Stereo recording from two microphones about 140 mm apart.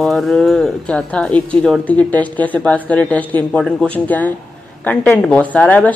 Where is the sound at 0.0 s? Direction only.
Centre (ahead or behind).